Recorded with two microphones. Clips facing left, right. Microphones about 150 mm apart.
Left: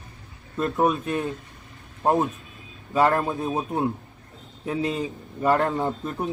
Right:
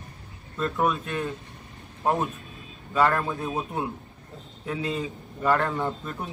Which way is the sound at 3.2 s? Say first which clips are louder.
Left 3 dB; 20° left (ahead or behind).